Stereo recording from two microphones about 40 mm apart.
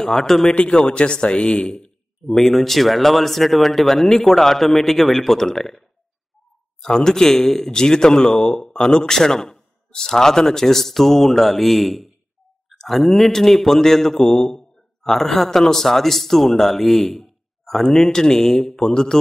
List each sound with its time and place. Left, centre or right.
0.0 s speech: centre
0.6 s speech: left
2.3 s speech: centre
6.8 s a man's voice: centre